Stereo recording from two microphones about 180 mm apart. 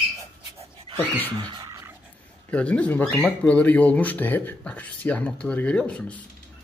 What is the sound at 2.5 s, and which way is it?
Speech, 5° left (ahead or behind).